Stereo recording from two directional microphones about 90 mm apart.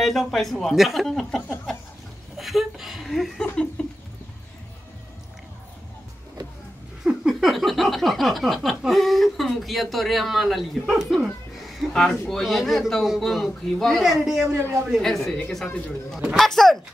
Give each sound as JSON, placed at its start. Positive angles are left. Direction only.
{"t": 0.0, "sound": "speech", "side_deg": 5}
{"t": 7.1, "sound": "a sound", "side_deg": -5}
{"t": 8.6, "sound": "speech", "side_deg": 0}
{"t": 14.5, "sound": "a man's voice", "side_deg": -35}
{"t": 15.0, "sound": "speech", "side_deg": 5}